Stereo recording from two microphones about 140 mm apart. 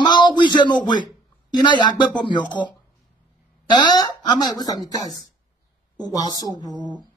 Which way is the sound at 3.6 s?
30° left (ahead or behind).